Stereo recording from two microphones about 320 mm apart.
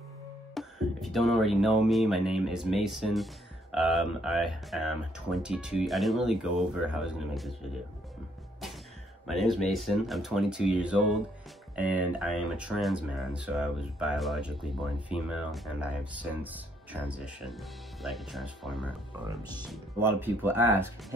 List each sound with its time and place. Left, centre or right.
0.6 s speech: centre
9.3 s speech: centre
20.0 s speech: centre